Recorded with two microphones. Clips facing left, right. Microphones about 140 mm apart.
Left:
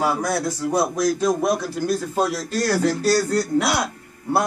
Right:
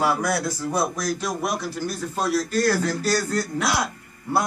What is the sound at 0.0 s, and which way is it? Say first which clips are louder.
Speech: left 1 dB; 20° left (ahead or behind).